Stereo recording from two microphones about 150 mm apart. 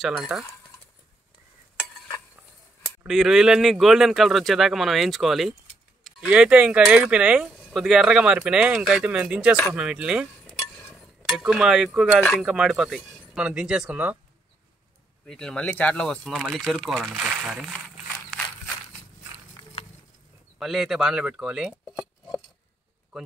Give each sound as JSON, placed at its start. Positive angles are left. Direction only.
{"t": 0.0, "sound": "speech", "side_deg": 0}
{"t": 3.1, "sound": "speech", "side_deg": 0}
{"t": 11.3, "sound": "speech", "side_deg": -5}
{"t": 15.2, "sound": "speech", "side_deg": 5}
{"t": 19.3, "sound": "a sound", "side_deg": 45}
{"t": 20.5, "sound": "speech", "side_deg": 0}